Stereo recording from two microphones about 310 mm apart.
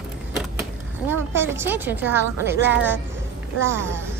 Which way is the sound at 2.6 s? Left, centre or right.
Right.